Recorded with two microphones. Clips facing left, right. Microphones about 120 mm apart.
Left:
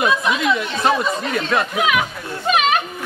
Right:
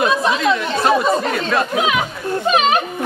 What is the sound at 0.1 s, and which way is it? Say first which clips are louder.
Speech: right 2 dB; 30° right (ahead or behind).